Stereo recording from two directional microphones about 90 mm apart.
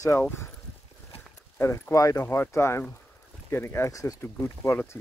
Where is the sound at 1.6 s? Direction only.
30° left (ahead or behind).